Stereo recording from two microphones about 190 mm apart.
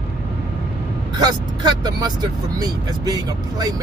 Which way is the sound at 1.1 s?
20° right (ahead or behind).